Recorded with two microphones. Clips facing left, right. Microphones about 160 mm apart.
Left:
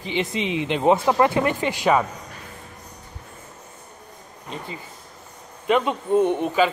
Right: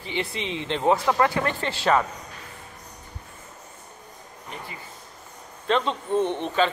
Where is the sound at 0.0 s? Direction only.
20° left (ahead or behind).